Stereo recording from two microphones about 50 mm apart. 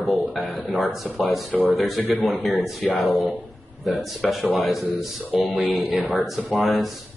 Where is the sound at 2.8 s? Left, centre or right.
Centre.